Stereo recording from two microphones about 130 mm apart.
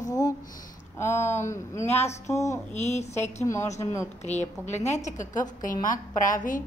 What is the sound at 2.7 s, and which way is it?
Speech, 60° left (ahead or behind).